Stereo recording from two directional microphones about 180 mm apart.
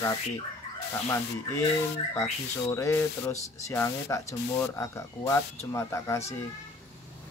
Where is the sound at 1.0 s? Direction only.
15° left (ahead or behind).